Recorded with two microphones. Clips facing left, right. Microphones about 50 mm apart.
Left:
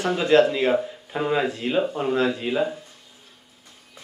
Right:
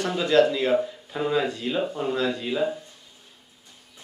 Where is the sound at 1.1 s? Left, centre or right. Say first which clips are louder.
Left 2 dB; left.